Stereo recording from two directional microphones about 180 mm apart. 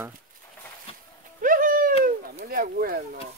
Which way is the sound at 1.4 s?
50° right (ahead or behind).